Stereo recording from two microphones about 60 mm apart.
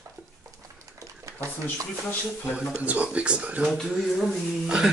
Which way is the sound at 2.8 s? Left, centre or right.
Right.